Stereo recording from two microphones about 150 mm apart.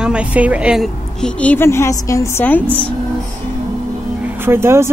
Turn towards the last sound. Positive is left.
turn(degrees=-15)  # may be behind; listen again after turning